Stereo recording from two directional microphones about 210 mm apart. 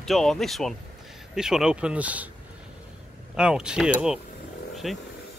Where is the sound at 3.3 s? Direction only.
5° right (ahead or behind).